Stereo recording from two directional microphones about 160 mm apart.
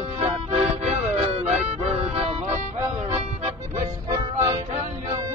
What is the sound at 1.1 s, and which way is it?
Music, 40° right (ahead or behind).